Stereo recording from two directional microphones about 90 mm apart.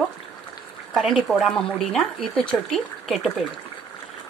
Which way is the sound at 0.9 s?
Centre (ahead or behind).